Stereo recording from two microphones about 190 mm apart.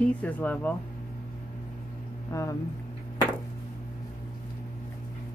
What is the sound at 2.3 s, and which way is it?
Speech, 15° left (ahead or behind).